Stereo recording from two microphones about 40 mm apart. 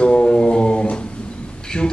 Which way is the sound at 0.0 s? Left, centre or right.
Left.